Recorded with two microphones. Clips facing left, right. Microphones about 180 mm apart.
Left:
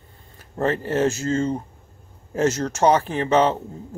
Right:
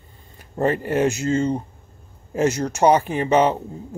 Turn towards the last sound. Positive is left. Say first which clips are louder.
# right 1 dB
turn(degrees=-10)  # may be behind; listen again after turning